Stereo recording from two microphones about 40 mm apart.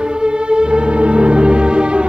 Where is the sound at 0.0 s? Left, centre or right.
Right.